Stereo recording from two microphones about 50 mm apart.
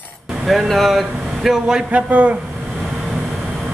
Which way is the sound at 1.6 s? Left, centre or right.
Centre.